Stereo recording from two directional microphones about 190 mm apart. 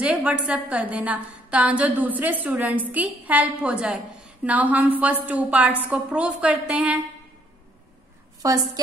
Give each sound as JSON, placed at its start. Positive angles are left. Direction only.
{"t": 0.0, "sound": "a woman's voice", "side_deg": -5}
{"t": 8.4, "sound": "a woman's voice", "side_deg": -20}